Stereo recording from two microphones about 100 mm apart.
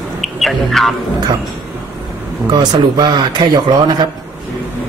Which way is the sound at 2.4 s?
45° right (ahead or behind).